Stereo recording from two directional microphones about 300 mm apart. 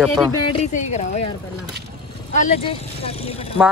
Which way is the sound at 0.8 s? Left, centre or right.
Left.